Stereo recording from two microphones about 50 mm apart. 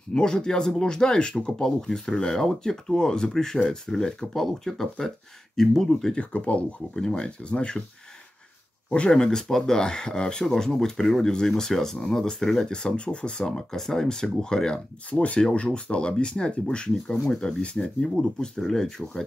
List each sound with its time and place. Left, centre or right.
0.1 s speech: centre
6.1 s speech: left
9.1 s speech: centre
15.0 s speech: left; by 19.2 s centre